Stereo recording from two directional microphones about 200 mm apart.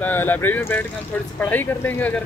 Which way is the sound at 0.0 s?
10° left (ahead or behind).